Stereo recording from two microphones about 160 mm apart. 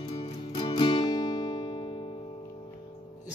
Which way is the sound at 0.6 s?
30° left (ahead or behind).